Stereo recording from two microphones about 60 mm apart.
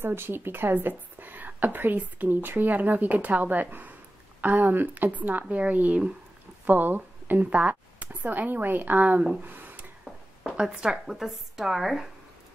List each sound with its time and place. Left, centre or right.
0.0 s a woman's voice: right
6.6 s speech: right
9.4 s a sound: right
10.5 s speech: centre